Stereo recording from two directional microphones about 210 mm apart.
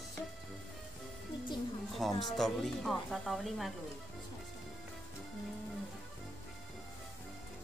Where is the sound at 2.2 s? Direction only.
Centre (ahead or behind).